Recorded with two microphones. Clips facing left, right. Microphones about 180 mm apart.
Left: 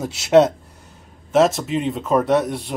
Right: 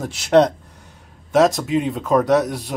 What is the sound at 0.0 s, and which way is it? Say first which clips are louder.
A man's voice: left 1 dB; 5° left (ahead or behind).